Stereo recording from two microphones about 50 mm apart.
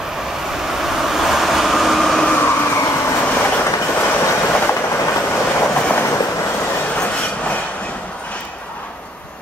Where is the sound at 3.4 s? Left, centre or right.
Left.